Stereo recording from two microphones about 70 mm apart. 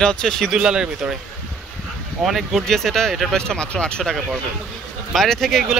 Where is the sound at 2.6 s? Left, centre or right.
Centre.